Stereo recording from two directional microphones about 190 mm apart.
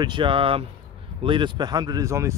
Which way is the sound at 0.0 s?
25° right (ahead or behind).